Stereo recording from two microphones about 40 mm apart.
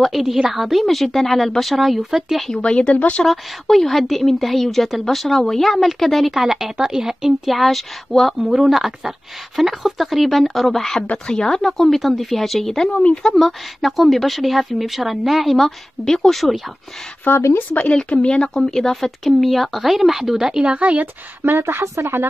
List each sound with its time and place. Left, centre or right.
0.1 s a woman's voice: centre
2.5 s a woman's voice: left
3.3 s a woman's voice: centre
6.5 s speech: centre
7.6 s a woman's voice: centre
11.0 s a woman's voice: left; by 15.5 s centre
15.5 s speech: centre
17.2 s speech: left
18.1 s speech: left
18.6 s a woman's voice: centre
20.6 s speech: right
21.0 s speech: right